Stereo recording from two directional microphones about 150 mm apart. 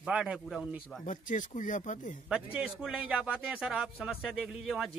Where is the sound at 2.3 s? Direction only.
5° right (ahead or behind).